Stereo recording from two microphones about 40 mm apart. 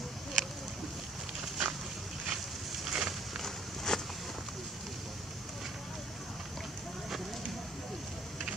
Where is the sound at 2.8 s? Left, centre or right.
Centre.